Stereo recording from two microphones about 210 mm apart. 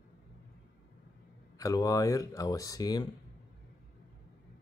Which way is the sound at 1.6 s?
15° left (ahead or behind).